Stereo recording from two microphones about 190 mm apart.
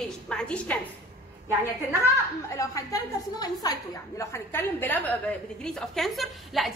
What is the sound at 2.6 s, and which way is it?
A woman's voice, 20° left (ahead or behind).